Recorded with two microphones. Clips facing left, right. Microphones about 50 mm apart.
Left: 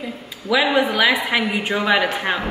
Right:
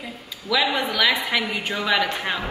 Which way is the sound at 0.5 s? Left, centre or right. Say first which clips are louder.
Left 5 dB; centre.